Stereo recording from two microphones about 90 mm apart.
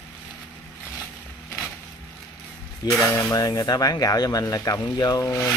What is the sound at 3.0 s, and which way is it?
Speech, 35° left (ahead or behind).